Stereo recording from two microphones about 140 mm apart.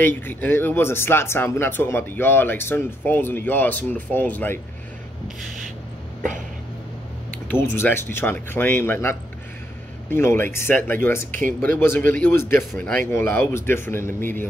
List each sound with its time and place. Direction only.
0.0 s speech: 15° left (ahead or behind)
7.4 s speech: 15° left (ahead or behind)